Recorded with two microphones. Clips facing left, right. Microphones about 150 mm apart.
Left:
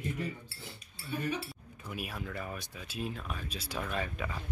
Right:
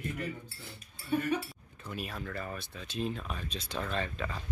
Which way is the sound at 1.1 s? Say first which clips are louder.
Right 5 dB; 55° right (ahead or behind).